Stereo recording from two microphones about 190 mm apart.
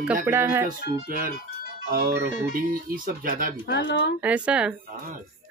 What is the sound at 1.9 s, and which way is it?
Speech, 50° right (ahead or behind).